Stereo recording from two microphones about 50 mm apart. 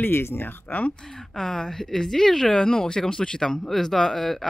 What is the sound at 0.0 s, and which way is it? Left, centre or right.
Speech, left.